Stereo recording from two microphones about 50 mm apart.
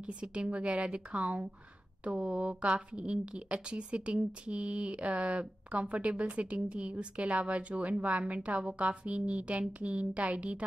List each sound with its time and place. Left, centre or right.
0.0 s a woman's voice: right